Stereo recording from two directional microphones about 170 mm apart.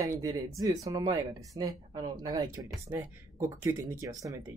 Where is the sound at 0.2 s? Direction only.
20° right (ahead or behind).